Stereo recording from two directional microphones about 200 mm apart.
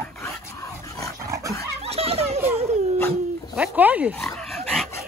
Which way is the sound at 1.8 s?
30° right (ahead or behind).